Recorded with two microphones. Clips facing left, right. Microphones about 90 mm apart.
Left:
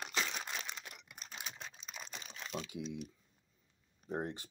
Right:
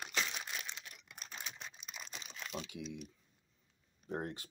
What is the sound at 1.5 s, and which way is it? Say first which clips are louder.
Crumpling: left 1 dB; 35° left (ahead or behind).